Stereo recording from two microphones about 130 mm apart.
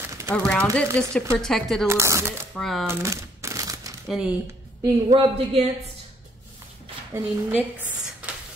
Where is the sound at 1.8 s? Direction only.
20° right (ahead or behind).